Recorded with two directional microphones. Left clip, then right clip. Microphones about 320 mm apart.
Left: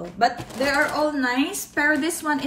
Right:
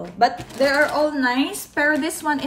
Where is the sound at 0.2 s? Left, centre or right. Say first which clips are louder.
Right 4 dB; centre.